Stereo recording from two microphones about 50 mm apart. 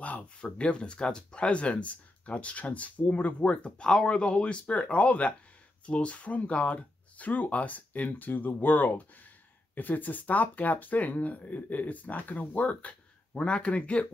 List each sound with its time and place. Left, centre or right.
0.0 s speech: left